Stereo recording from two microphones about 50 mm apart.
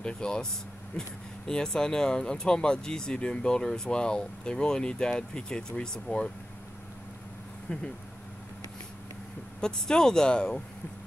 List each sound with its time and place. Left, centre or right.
0.0 s speech: centre
1.5 s speech: centre
9.6 s speech: centre